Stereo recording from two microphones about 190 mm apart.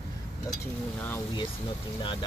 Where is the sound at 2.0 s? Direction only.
25° left (ahead or behind).